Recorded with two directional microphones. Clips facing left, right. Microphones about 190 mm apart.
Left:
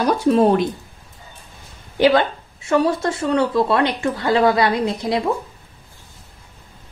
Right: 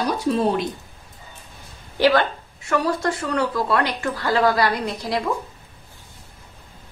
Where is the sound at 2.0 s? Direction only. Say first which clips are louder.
Left 3 dB; 20° left (ahead or behind).